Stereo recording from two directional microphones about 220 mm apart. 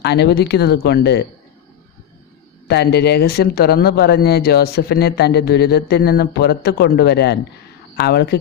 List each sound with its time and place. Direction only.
0.0 s speech: 50° left (ahead or behind)
2.7 s speech: 50° left (ahead or behind)